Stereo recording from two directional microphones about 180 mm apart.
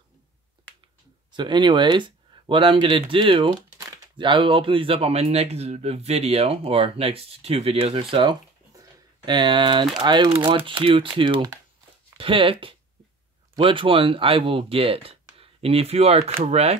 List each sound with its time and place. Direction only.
1.3 s speech: 25° right (ahead or behind)